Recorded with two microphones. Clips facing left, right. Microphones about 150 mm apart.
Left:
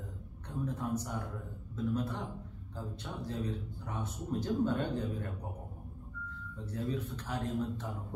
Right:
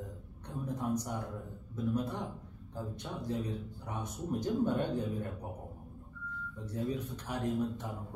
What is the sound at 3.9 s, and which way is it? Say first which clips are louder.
Speech: right 1 dB; 15° right (ahead or behind).